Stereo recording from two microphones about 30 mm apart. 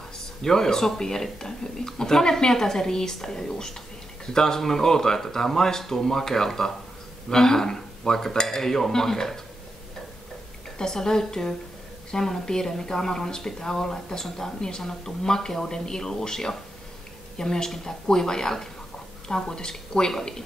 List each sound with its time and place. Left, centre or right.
0.4 s speech: centre
10.8 s speech: centre